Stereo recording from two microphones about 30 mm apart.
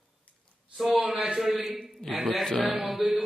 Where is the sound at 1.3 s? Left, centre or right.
Centre.